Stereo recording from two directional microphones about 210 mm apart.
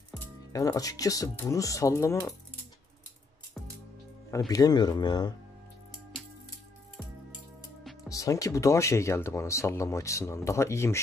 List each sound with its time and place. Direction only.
0.5 s speech: 15° left (ahead or behind)
4.5 s speech: 20° left (ahead or behind)
8.1 s speech: 15° left (ahead or behind)